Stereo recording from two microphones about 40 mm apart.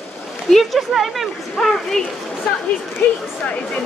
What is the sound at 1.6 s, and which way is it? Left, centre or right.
Speech, centre.